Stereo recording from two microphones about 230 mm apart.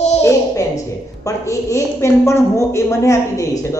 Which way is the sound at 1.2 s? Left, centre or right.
Centre.